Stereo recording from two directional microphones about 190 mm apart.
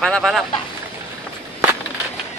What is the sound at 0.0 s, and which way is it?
Speech, 5° left (ahead or behind).